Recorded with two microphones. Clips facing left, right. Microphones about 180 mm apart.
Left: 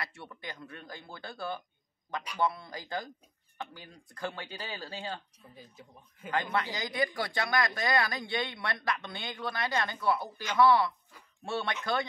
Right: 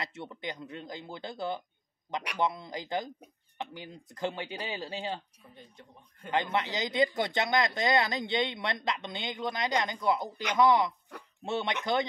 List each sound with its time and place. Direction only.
0.0 s speech: 20° right (ahead or behind)
5.5 s speech: 5° left (ahead or behind)
6.5 s speech: 20° right (ahead or behind)
11.1 s speech: 70° right (ahead or behind)
11.4 s speech: 20° right (ahead or behind)